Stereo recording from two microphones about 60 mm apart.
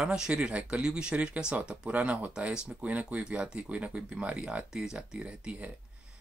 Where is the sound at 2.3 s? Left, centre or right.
Centre.